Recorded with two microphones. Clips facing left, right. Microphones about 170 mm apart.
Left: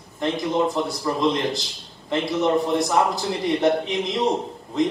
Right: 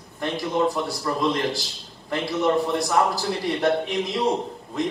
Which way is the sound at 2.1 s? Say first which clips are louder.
Left 3 dB; 20° left (ahead or behind).